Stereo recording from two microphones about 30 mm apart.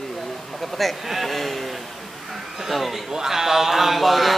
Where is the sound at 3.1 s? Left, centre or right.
Centre.